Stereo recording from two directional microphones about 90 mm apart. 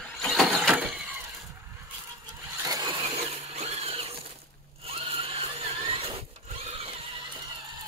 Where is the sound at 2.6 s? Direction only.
45° right (ahead or behind).